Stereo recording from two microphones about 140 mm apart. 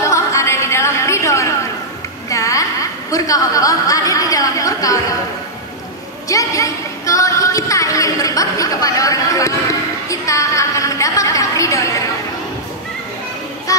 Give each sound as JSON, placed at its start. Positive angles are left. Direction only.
{"t": 0.0, "sound": "music", "side_deg": 20}
{"t": 2.2, "sound": "a woman's voice", "side_deg": 25}
{"t": 6.2, "sound": "a sound", "side_deg": 25}
{"t": 13.7, "sound": "music", "side_deg": 25}